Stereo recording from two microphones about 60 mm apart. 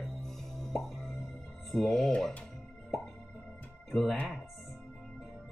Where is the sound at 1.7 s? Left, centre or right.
Centre.